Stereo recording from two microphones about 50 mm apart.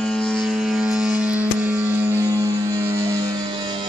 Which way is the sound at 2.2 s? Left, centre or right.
Right.